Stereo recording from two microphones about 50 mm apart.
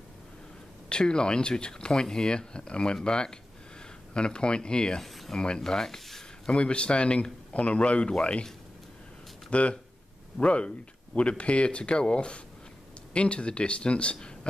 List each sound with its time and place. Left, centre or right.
0.8 s a man's voice: centre
5.0 s speech: centre
5.4 s speech: centre
6.5 s a man's voice: left
9.5 s a man's voice: left